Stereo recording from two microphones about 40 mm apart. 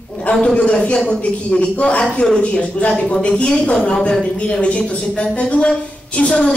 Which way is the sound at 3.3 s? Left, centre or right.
Left.